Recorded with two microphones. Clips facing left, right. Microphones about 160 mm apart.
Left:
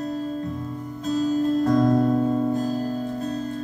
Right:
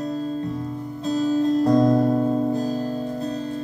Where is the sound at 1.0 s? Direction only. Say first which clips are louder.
Right 1 dB; 35° right (ahead or behind).